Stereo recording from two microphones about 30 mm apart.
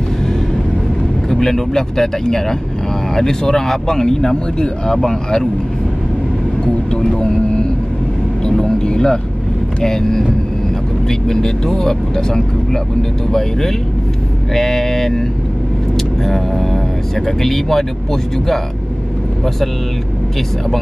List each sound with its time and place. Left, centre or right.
1.3 s speech: centre
4.9 s speech: centre
6.6 s vehicle: left
8.5 s speech: centre
16.3 s speech: centre